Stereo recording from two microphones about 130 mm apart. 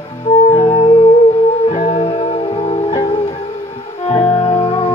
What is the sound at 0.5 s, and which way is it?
Music, 40° left (ahead or behind).